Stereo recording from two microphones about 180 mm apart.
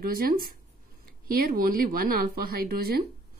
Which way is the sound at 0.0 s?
55° right (ahead or behind).